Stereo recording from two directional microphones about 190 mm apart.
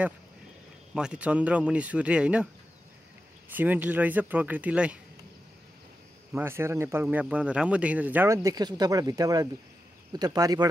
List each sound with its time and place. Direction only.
0.9 s speech: 5° right (ahead or behind)
3.4 s speech: 10° right (ahead or behind)
6.3 s speech: 10° right (ahead or behind)